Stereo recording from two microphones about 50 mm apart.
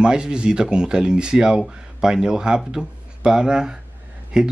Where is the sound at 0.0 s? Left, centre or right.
Centre.